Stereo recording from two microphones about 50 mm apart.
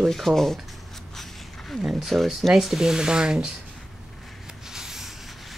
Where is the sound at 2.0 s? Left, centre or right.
Centre.